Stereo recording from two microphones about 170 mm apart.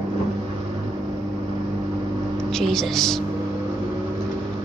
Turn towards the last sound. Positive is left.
turn(degrees=0)  # may be behind; listen again after turning